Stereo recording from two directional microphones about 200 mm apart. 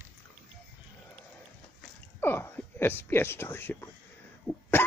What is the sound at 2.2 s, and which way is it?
Speech, 10° left (ahead or behind).